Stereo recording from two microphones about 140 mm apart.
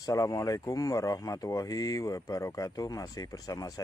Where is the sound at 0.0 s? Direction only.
25° left (ahead or behind).